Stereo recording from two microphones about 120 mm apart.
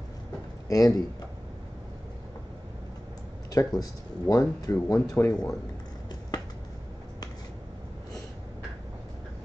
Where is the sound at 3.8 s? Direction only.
30° left (ahead or behind).